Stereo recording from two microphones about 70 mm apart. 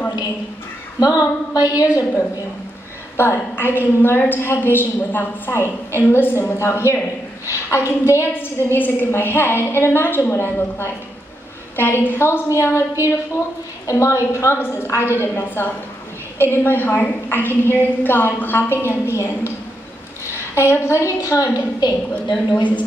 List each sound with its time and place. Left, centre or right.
0.9 s a woman's voice: left
3.2 s a woman's voice: left
6.6 s a woman's voice: left
21.5 s a woman's voice: left